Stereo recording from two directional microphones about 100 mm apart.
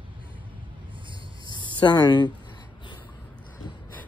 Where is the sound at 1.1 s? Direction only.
55° right (ahead or behind).